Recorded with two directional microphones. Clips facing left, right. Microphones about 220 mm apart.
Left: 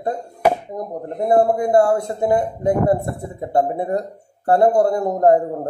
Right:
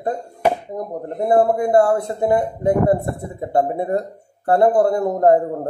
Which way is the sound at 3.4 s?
25° right (ahead or behind).